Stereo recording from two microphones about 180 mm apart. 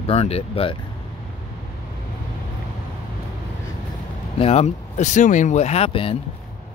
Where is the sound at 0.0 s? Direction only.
35° left (ahead or behind).